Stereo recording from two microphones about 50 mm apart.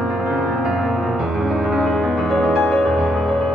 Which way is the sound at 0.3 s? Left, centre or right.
Centre.